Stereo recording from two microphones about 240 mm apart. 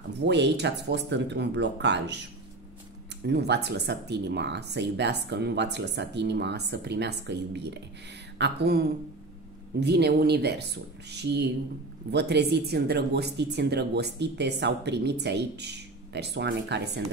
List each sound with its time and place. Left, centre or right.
0.2 s speech: right
3.3 s speech: right